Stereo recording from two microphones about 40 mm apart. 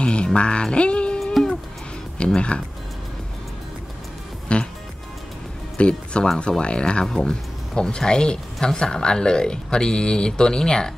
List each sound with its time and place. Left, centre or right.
0.0 s music: left
1.2 s music: centre
2.1 s speech: left
4.5 s speech: left
5.8 s speech: left